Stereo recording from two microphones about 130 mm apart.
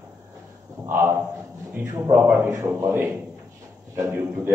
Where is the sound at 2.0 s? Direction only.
15° right (ahead or behind).